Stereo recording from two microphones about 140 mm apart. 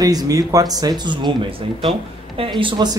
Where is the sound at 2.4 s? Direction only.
35° right (ahead or behind).